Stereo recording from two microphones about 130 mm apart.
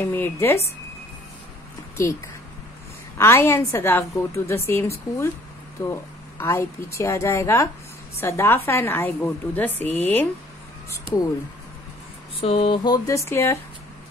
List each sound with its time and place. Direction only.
0.0 s a woman's voice: 20° left (ahead or behind)
3.2 s a woman's voice: 20° left (ahead or behind)
12.4 s a woman's voice: 45° left (ahead or behind); by 13.6 s 20° left (ahead or behind)